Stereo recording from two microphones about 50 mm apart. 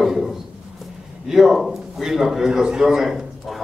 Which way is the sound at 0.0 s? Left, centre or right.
Centre.